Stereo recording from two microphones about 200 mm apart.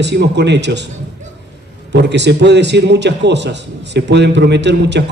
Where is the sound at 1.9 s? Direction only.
60° right (ahead or behind).